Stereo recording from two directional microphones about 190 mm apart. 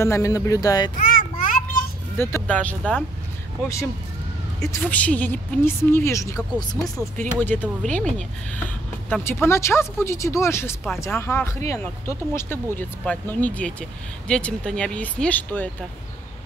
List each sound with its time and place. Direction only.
0.0 s speech: 15° left (ahead or behind)
0.9 s a sound: 45° left (ahead or behind)
2.1 s speech: 10° left (ahead or behind)
4.6 s speech: 10° left (ahead or behind)